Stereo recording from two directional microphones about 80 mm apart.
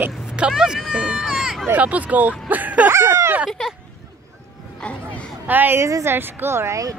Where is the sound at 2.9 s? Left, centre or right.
Right.